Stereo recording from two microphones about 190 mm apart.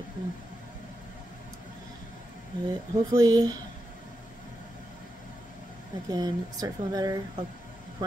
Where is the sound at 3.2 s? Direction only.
20° right (ahead or behind).